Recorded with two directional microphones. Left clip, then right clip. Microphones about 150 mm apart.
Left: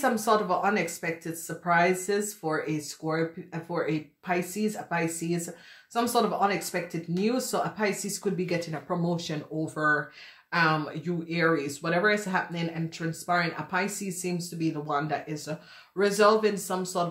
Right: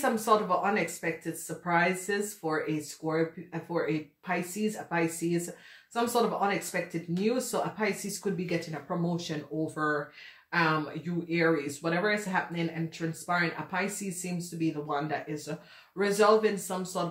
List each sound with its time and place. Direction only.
0.0 s speech: 45° left (ahead or behind)
3.0 s speech: 30° left (ahead or behind)
3.7 s speech: 40° left (ahead or behind)